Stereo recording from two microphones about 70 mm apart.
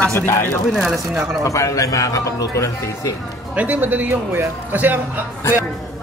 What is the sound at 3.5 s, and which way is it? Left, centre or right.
Speech, right.